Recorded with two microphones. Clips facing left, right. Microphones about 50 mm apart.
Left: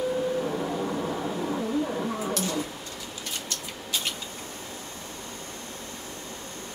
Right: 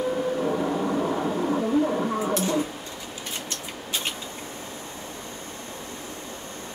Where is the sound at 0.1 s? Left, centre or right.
Centre.